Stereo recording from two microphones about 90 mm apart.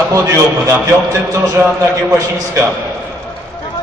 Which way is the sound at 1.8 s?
30° right (ahead or behind).